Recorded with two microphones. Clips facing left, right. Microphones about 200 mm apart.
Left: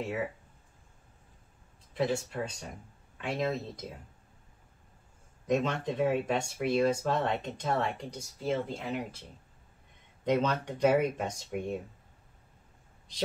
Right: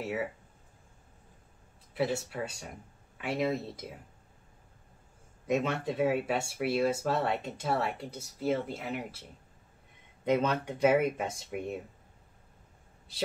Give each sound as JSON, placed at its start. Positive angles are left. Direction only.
{"t": 2.0, "sound": "speech", "side_deg": -10}
{"t": 5.5, "sound": "speech", "side_deg": -5}
{"t": 10.2, "sound": "speech", "side_deg": -5}